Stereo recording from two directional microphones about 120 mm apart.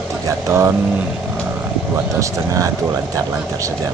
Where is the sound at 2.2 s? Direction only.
25° right (ahead or behind).